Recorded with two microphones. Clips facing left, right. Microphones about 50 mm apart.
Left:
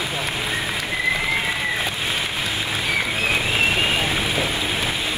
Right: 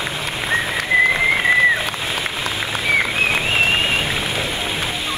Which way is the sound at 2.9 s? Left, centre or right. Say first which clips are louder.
Right 6 dB; right.